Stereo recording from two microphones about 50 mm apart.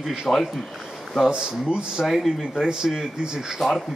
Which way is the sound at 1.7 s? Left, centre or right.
Centre.